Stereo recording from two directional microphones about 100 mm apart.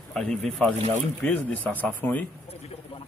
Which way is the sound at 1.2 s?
15° left (ahead or behind).